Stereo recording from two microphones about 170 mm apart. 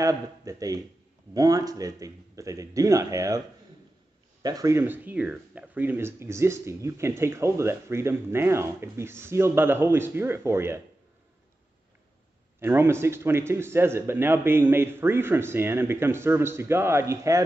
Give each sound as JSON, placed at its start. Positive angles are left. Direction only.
{"t": 0.0, "sound": "speech", "side_deg": -20}
{"t": 12.5, "sound": "speech", "side_deg": -15}